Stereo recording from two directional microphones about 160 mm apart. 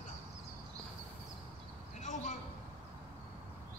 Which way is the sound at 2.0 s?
55° left (ahead or behind).